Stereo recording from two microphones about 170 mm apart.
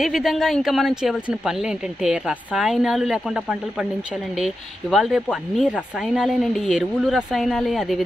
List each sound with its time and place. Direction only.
0.0 s speech: centre (ahead or behind)